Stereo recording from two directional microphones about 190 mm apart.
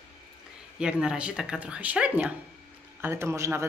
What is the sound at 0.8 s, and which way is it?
A woman's voice, 5° right (ahead or behind).